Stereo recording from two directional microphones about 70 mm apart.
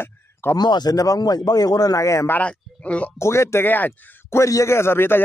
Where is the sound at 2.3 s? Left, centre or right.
Centre.